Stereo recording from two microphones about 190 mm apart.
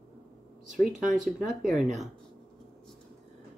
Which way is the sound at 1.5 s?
Centre (ahead or behind).